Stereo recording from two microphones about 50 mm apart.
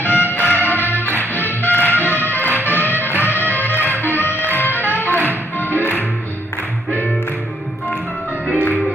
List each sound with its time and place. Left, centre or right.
0.0 s music: left